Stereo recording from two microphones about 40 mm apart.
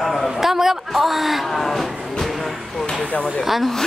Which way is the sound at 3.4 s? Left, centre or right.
Centre.